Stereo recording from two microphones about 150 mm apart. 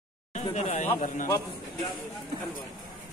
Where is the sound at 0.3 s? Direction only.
50° left (ahead or behind).